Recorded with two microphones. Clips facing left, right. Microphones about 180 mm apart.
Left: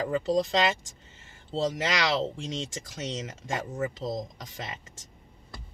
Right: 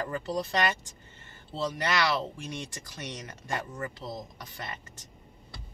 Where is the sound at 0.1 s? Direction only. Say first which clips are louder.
Left 6 dB; 90° left.